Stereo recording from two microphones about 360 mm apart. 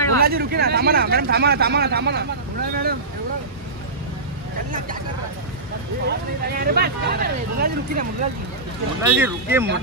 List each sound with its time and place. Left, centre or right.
0.2 s speech: right
6.0 s speech: right
9.0 s speech: centre